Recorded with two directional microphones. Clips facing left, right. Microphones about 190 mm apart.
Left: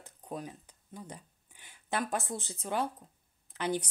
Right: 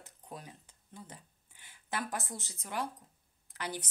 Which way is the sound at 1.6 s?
20° left (ahead or behind).